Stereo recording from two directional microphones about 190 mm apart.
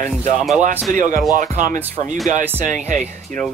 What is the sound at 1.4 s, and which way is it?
Speech, 45° right (ahead or behind).